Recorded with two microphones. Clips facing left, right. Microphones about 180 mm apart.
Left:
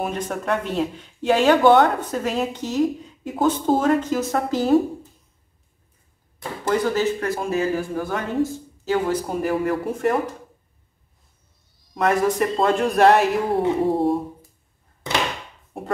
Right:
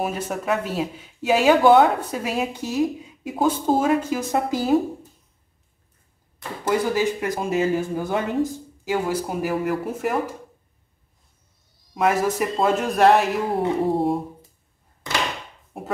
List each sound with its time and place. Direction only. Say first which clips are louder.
0.0 s speech: even; 5° right (ahead or behind)
6.6 s speech: even; 10° right (ahead or behind)
8.8 s speech: left 2 dB; 10° right (ahead or behind)
11.9 s speech: left 1 dB; 5° right (ahead or behind)
15.7 s speech: left 2 dB; centre (ahead or behind)